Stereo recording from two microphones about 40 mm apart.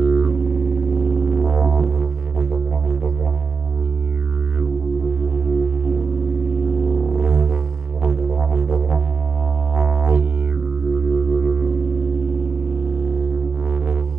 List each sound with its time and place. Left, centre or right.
0.0 s music: right
4.6 s music: right
10.9 s music: right